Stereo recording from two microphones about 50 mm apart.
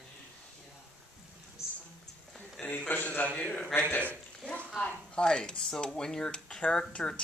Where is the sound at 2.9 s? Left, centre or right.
Left.